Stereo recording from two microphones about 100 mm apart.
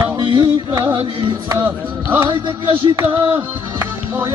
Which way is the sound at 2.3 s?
50° right (ahead or behind).